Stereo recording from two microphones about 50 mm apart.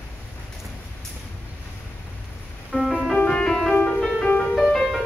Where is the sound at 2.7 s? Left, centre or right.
Centre.